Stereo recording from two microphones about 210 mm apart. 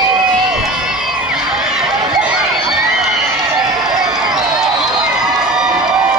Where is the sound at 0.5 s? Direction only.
Centre (ahead or behind).